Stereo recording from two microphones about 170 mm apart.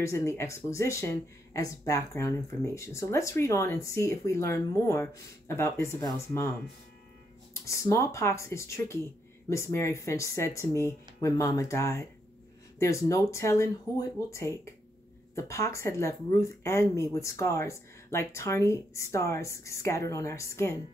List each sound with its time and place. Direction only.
0.0 s speech: 20° left (ahead or behind)
7.5 s speech: 15° left (ahead or behind)